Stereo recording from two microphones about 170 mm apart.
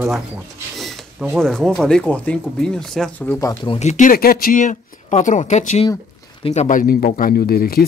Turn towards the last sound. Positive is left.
turn(degrees=60)  # may be behind; listen again after turning